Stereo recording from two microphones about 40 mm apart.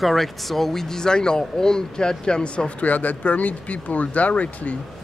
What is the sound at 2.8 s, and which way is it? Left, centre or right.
Speech, left.